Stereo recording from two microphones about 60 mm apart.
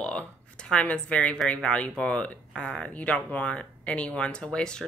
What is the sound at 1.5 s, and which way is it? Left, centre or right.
Speech, centre.